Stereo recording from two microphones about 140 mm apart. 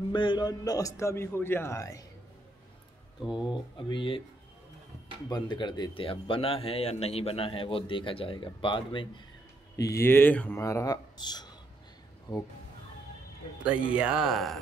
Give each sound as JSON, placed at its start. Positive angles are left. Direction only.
{"t": 0.1, "sound": "a man's voice", "side_deg": 35}
{"t": 3.3, "sound": "a man's voice", "side_deg": 35}
{"t": 5.3, "sound": "a man's voice", "side_deg": 35}
{"t": 9.8, "sound": "a man's voice", "side_deg": 20}
{"t": 13.7, "sound": "speech", "side_deg": -10}